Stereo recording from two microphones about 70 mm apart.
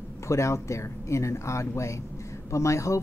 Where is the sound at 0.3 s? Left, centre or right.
Left.